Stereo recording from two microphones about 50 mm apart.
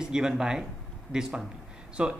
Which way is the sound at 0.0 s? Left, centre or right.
Centre.